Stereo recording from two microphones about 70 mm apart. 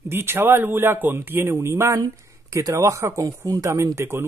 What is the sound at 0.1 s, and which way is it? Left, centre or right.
Speech, right.